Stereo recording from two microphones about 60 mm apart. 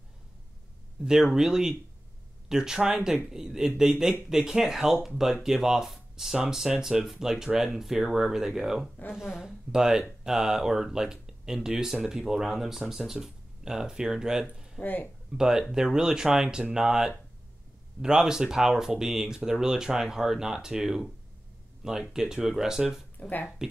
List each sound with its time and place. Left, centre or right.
1.0 s speech: centre
14.8 s speech: left
15.3 s speech: centre
22.1 s speech: centre
23.1 s speech: left